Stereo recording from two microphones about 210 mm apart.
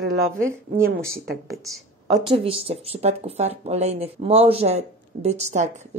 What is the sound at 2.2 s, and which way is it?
A woman's voice, 25° right (ahead or behind).